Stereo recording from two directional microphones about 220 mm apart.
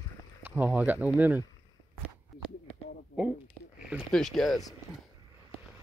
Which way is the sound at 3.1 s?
40° left (ahead or behind).